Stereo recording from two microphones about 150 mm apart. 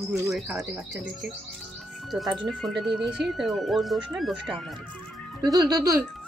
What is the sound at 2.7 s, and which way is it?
Speech, 30° right (ahead or behind).